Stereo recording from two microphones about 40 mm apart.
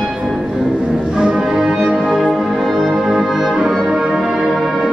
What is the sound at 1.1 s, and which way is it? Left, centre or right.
Music, right.